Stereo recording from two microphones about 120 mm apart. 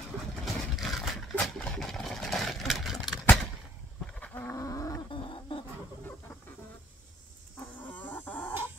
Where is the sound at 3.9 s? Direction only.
10° left (ahead or behind).